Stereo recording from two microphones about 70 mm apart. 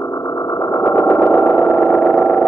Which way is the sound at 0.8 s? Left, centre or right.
Left.